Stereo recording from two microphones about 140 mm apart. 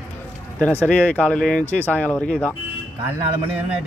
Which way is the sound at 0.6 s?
10° left (ahead or behind).